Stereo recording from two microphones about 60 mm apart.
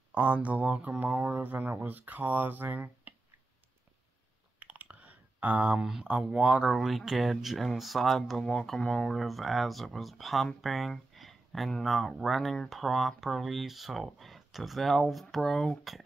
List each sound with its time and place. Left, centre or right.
0.1 s speech: right
4.6 s clicking: right
6.0 s speech: centre
6.7 s speech: centre